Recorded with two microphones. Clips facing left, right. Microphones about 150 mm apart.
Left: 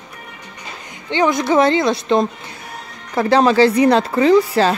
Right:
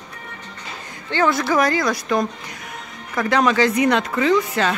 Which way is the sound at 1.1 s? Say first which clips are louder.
Left 3 dB; 20° left (ahead or behind).